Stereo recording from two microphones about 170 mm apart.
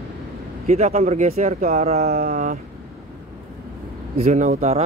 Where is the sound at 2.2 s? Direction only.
55° right (ahead or behind).